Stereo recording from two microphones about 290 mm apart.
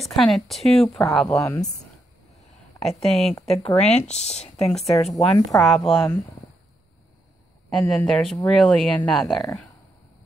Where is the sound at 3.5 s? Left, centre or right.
Left.